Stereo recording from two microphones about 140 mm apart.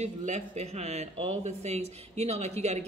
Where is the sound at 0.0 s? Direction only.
55° right (ahead or behind).